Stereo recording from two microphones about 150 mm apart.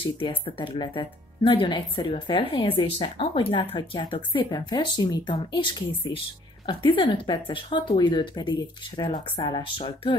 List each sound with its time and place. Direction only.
0.0 s speech: 35° left (ahead or behind)